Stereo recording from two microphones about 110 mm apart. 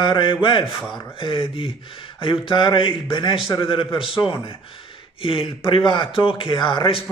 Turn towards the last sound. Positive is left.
turn(degrees=55)  # may be behind; listen again after turning